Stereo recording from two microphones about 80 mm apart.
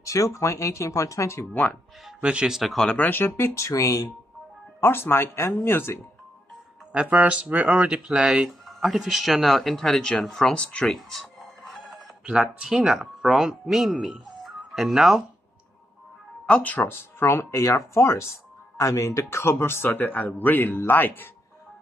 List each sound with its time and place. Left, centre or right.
0.0 s speech: left
1.5 s speech: centre
2.2 s speech: centre
2.9 s speech: left
4.7 s speech: left
6.9 s speech: centre
11.0 s music: centre
12.3 s speech: centre
16.4 s speech: centre